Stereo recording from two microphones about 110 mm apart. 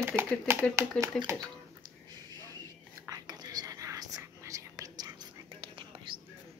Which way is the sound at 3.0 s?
35° right (ahead or behind).